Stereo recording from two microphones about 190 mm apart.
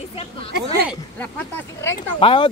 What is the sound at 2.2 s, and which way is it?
Speech, 30° left (ahead or behind).